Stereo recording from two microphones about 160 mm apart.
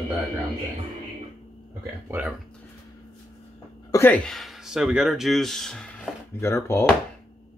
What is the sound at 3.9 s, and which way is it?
Speech, 10° left (ahead or behind).